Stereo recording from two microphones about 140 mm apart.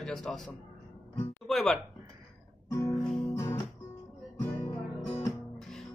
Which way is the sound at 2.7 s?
20° left (ahead or behind).